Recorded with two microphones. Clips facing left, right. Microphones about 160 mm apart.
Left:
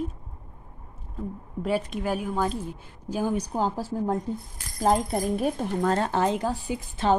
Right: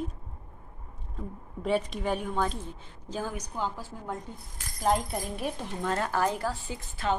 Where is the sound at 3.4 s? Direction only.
35° left (ahead or behind).